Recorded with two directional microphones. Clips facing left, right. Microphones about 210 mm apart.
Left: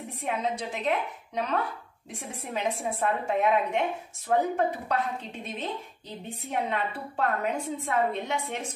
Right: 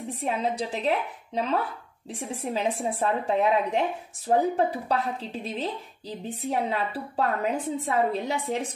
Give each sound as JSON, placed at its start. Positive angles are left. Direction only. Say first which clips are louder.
{"t": 0.2, "sound": "a woman's voice", "louder": "right 2 dB", "side_deg": -35}